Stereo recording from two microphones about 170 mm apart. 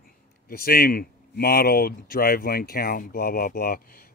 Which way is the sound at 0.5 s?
60° left (ahead or behind).